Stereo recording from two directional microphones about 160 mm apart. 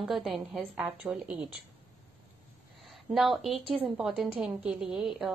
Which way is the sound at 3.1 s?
Centre (ahead or behind).